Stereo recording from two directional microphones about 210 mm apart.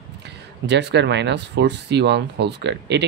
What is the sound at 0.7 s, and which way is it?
Speech, 55° right (ahead or behind).